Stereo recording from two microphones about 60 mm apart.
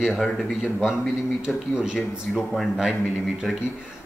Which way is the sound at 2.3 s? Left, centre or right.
Centre.